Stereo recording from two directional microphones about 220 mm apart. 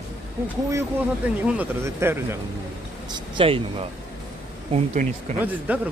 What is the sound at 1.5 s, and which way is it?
Speech, 10° right (ahead or behind).